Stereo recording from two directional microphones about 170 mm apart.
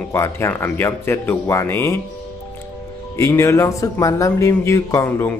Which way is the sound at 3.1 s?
15° left (ahead or behind).